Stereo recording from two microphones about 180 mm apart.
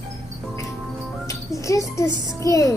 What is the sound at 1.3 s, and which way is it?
Music, 15° left (ahead or behind).